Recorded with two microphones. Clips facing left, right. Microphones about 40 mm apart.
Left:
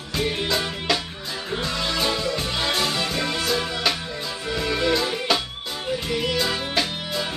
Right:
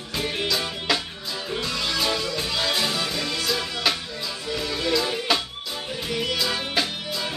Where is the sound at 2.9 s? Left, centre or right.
Centre.